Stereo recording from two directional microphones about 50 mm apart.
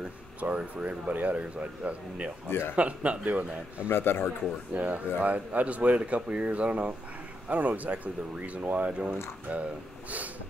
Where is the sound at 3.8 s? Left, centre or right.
Left.